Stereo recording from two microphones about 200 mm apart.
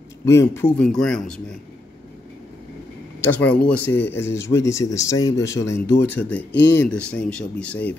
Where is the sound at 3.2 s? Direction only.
5° left (ahead or behind).